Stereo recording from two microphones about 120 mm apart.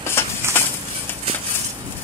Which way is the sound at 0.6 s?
20° left (ahead or behind).